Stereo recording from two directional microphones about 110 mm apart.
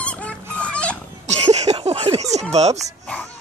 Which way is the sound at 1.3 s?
90° right.